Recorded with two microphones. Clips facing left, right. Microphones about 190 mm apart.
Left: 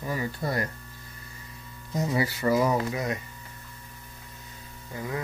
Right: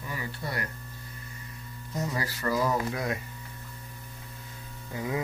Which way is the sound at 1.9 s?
15° left (ahead or behind).